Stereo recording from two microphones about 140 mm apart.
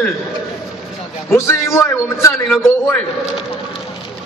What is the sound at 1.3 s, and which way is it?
A man's voice, 20° left (ahead or behind).